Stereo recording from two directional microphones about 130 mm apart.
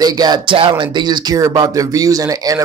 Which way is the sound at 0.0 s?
30° right (ahead or behind).